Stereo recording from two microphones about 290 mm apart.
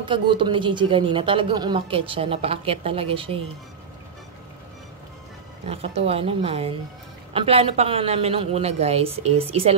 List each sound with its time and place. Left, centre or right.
0.0 s speech: centre
5.7 s a woman's voice: centre